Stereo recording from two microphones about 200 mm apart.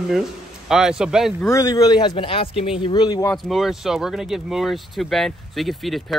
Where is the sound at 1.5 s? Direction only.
15° left (ahead or behind).